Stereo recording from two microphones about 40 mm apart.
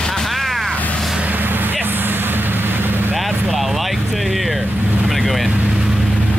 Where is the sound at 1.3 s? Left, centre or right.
Right.